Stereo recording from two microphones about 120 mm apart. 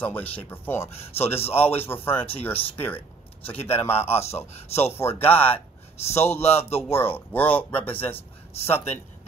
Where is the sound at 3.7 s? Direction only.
15° left (ahead or behind).